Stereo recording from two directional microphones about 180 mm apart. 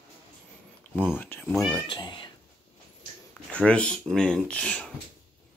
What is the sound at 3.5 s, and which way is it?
Speech, 5° left (ahead or behind).